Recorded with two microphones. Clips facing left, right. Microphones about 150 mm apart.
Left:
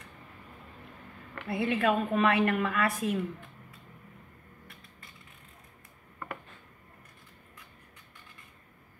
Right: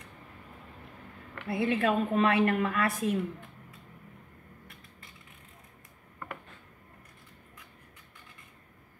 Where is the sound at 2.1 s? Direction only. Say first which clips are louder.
Right 1 dB; 30° right (ahead or behind).